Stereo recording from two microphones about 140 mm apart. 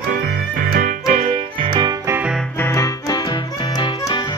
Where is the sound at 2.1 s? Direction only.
10° right (ahead or behind).